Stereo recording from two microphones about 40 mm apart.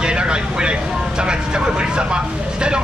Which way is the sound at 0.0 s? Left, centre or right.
Right.